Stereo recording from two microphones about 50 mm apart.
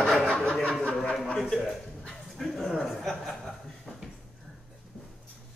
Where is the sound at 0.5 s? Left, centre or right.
Centre.